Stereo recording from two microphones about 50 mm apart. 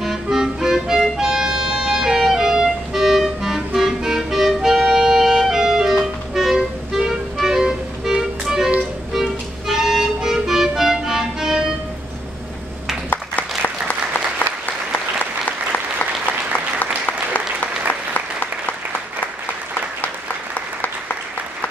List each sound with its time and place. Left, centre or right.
0.0 s music: centre
13.1 s applause: left
16.5 s applause: left